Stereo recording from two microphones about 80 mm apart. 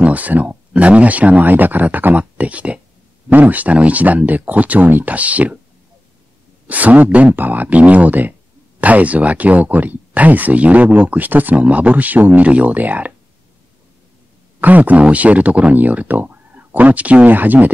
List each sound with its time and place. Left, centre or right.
0.0 s speech: centre
6.7 s speech: centre
14.6 s speech: centre